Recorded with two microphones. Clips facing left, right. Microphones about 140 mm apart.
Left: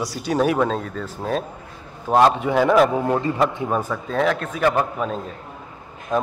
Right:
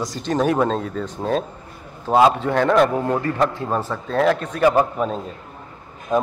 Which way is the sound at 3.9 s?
Centre (ahead or behind).